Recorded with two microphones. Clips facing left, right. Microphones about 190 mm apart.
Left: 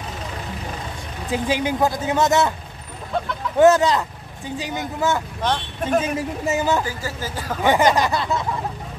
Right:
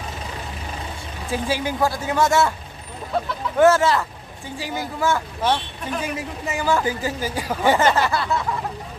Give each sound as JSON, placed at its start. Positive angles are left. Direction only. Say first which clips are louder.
{"t": 1.3, "sound": "speech", "louder": "left 2 dB", "side_deg": 20}
{"t": 3.5, "sound": "a sound", "louder": "left 1 dB", "side_deg": 20}
{"t": 4.6, "sound": "speech", "louder": "left 1 dB", "side_deg": 20}
{"t": 5.4, "sound": "speech", "louder": "right 2 dB", "side_deg": -5}
{"t": 5.9, "sound": "speech", "louder": "left 6 dB", "side_deg": 25}
{"t": 6.8, "sound": "speech", "louder": "right 3 dB", "side_deg": -20}
{"t": 7.6, "sound": "a sound", "louder": "left 1 dB", "side_deg": 15}